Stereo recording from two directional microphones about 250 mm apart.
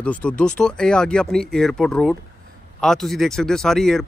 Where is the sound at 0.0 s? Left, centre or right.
Centre.